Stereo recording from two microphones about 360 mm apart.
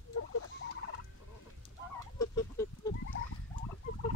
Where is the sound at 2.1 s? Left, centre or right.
Centre.